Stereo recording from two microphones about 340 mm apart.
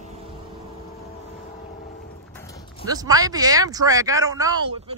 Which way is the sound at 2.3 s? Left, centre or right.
Centre.